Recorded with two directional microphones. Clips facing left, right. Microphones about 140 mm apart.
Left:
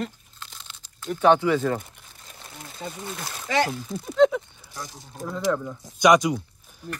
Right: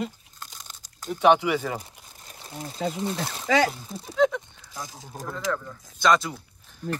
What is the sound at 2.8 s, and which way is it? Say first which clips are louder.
Speech: right 7 dB; 90° right.